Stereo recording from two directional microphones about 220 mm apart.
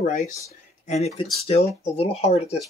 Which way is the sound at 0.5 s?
30° left (ahead or behind).